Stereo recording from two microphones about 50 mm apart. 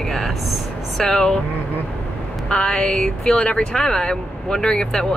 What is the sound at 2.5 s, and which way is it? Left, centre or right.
Speech, centre.